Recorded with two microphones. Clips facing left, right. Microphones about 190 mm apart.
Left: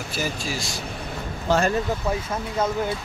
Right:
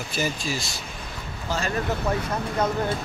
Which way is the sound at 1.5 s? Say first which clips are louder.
Left 8 dB; 65° left (ahead or behind).